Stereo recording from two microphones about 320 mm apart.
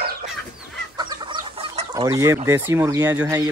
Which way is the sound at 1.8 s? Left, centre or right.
Centre.